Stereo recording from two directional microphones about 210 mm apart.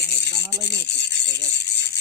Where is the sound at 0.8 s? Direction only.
55° left (ahead or behind).